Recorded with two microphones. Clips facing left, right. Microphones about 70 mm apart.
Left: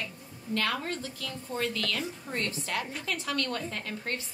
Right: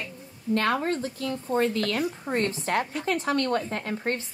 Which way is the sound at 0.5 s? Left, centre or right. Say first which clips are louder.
Right 6 dB; right.